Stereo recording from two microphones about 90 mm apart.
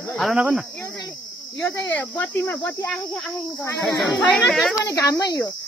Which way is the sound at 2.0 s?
25° left (ahead or behind).